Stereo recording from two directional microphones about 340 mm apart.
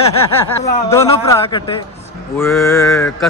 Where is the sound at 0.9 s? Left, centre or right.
Centre.